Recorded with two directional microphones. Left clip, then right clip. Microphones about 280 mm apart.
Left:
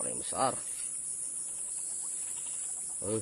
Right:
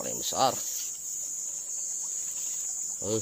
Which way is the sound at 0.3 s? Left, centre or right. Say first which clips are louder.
Right 5 dB; right.